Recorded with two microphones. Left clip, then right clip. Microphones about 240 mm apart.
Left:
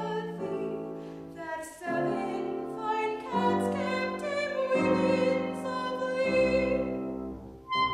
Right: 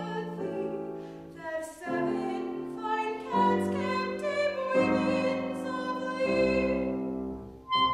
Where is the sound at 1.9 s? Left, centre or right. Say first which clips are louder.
Left 1 dB; centre.